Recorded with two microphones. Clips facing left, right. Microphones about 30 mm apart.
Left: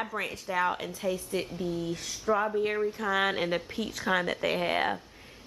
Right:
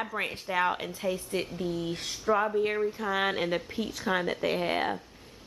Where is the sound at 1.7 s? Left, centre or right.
Right.